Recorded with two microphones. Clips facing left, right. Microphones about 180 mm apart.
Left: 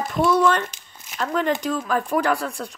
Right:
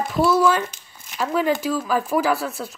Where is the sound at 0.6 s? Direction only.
10° left (ahead or behind).